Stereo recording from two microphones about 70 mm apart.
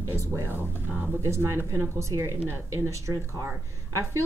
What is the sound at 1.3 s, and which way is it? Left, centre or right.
Speech, right.